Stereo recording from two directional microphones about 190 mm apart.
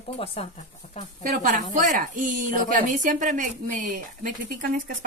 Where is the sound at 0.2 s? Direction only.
30° left (ahead or behind).